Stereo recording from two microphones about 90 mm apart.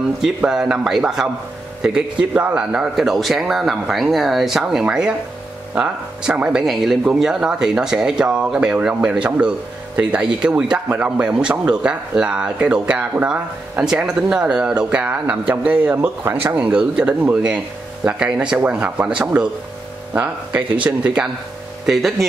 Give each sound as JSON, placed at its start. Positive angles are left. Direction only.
{"t": 0.5, "sound": "speech", "side_deg": -10}
{"t": 21.8, "sound": "speech", "side_deg": -5}